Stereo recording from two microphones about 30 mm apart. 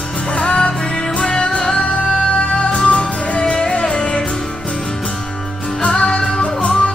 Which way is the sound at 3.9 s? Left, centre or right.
Centre.